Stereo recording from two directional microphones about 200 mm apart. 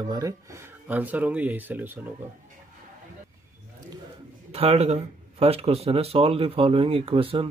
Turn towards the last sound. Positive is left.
turn(degrees=-25)  # may be behind; listen again after turning